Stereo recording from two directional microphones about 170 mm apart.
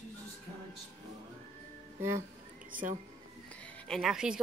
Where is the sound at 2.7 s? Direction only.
50° right (ahead or behind).